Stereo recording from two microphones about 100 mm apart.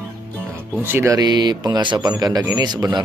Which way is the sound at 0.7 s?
20° right (ahead or behind).